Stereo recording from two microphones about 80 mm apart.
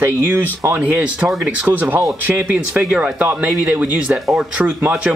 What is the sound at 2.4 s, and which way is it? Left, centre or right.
Speech, centre.